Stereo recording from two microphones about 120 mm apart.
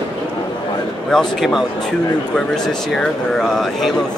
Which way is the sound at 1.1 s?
Centre (ahead or behind).